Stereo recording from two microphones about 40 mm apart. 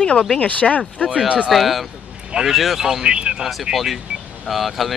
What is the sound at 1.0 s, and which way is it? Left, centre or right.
Speech, right.